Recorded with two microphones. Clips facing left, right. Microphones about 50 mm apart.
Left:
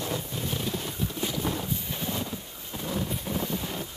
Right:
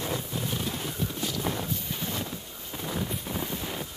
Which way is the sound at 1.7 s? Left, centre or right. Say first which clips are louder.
Left 1 dB; centre.